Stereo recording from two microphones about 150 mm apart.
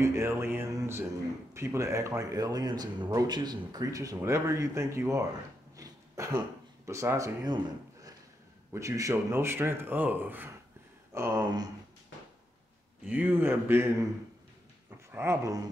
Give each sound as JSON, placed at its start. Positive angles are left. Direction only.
{"t": 0.0, "sound": "speech", "side_deg": -15}
{"t": 5.8, "sound": "a sound", "side_deg": -20}
{"t": 6.9, "sound": "speech", "side_deg": -20}
{"t": 11.1, "sound": "speech", "side_deg": -25}
{"t": 13.0, "sound": "speech", "side_deg": -10}
{"t": 14.9, "sound": "dog", "side_deg": -15}